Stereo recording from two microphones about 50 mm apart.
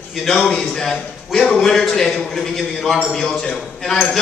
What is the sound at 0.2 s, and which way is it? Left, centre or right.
A man's voice, centre.